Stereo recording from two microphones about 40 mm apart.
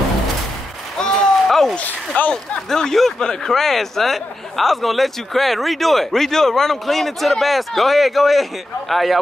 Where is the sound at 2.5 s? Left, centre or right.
Centre.